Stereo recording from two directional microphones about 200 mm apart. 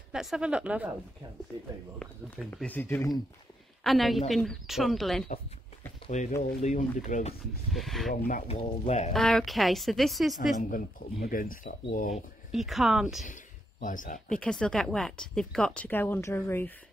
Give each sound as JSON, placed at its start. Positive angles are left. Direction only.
{"t": 0.1, "sound": "speech", "side_deg": 0}
{"t": 2.0, "sound": "speech", "side_deg": 5}
{"t": 6.0, "sound": "speech", "side_deg": 35}
{"t": 7.7, "sound": "speech", "side_deg": 0}
{"t": 8.1, "sound": "speech", "side_deg": 40}
{"t": 9.1, "sound": "speech", "side_deg": 0}
{"t": 11.2, "sound": "speech", "side_deg": 45}
{"t": 12.1, "sound": "speech", "side_deg": 0}
{"t": 13.2, "sound": "speech", "side_deg": 40}
{"t": 14.3, "sound": "speech", "side_deg": 5}